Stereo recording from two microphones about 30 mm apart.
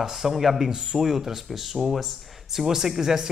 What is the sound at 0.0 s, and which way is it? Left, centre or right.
Speech, centre.